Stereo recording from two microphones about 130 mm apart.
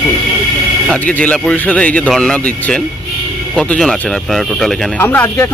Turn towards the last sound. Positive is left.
turn(degrees=20)  # may be behind; listen again after turning